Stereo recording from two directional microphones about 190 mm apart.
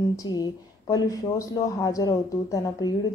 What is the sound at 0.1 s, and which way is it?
A woman's voice, 20° left (ahead or behind).